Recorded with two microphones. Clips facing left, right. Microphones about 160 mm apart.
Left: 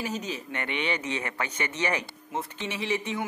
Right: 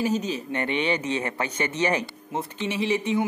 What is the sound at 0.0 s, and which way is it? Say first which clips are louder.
Speech: right 7 dB; 25° right (ahead or behind).